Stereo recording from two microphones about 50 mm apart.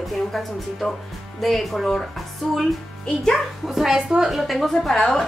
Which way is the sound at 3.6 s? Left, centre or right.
Centre.